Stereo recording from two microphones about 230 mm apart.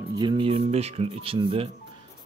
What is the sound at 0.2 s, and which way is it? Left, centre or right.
A man's voice, right.